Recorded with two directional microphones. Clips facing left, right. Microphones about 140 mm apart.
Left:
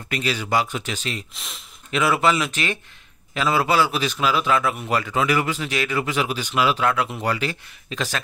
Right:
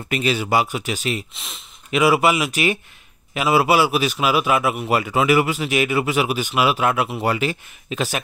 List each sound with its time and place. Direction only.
0.1 s a man's voice: 15° right (ahead or behind)
1.3 s a man's voice: centre (ahead or behind)